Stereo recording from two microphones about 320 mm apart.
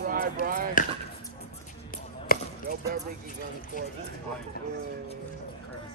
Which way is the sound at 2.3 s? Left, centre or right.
Left.